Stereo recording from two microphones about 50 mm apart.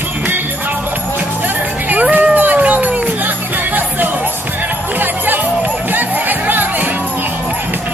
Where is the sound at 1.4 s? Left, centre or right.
Right.